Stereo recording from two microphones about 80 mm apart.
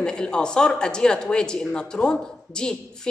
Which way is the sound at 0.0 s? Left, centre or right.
Centre.